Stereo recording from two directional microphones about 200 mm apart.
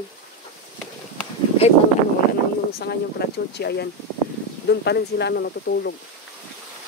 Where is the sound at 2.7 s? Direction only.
55° left (ahead or behind).